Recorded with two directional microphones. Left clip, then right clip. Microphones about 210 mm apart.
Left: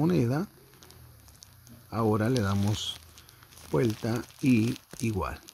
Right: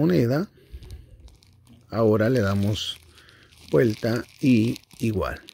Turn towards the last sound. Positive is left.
turn(degrees=-15)  # may be behind; listen again after turning